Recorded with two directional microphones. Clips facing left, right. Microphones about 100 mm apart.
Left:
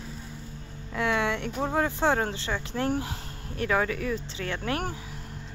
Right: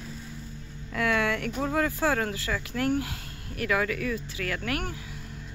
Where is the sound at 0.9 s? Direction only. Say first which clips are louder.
Even; 20° left (ahead or behind).